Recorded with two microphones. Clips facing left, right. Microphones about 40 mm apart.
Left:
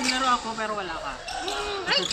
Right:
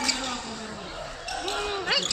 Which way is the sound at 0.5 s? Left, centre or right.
Left.